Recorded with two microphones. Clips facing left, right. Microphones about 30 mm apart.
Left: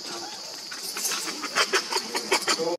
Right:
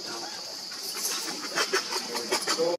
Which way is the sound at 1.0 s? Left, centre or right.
Left.